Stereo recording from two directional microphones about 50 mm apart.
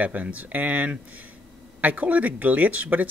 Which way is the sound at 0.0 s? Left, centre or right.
Right.